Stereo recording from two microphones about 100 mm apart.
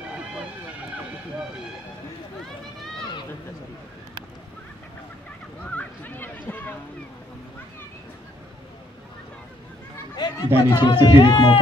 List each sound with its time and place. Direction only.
5.8 s a sound: 20° left (ahead or behind)
10.1 s chatter: 45° left (ahead or behind)
10.8 s speech: 50° left (ahead or behind)